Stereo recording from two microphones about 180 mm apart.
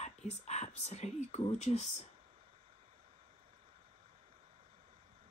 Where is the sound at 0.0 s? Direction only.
40° left (ahead or behind).